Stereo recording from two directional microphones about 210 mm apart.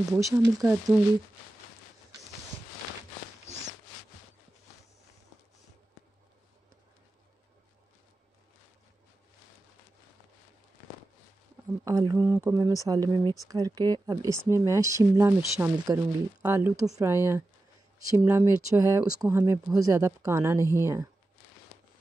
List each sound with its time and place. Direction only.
0.1 s speech: 10° right (ahead or behind)
11.8 s speech: 15° right (ahead or behind)